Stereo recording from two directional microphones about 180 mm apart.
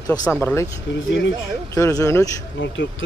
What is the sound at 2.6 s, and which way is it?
Speech, 90° left.